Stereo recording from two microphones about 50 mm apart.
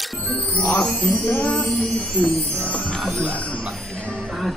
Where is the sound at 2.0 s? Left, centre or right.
Left.